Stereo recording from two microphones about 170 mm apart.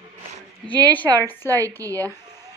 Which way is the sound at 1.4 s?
20° right (ahead or behind).